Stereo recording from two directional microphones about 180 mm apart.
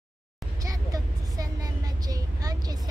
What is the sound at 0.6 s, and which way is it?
Vehicle, 20° right (ahead or behind).